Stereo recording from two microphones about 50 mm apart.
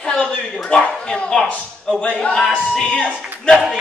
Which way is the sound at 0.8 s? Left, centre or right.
Left.